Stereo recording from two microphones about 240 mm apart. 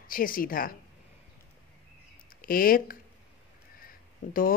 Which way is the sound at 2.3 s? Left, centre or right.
Left.